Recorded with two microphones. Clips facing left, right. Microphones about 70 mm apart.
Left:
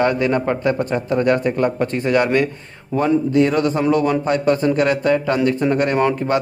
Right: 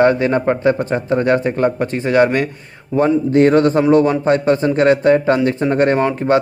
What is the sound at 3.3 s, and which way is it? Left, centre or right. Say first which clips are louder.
A man's voice: right 5 dB; right.